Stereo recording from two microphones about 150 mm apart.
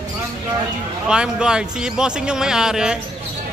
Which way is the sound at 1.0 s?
5° right (ahead or behind).